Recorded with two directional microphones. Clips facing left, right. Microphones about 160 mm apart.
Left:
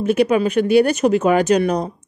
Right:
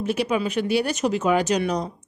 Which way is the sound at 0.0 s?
55° left (ahead or behind).